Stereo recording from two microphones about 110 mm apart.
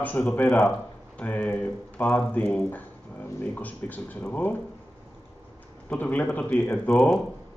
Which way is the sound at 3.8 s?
15° left (ahead or behind).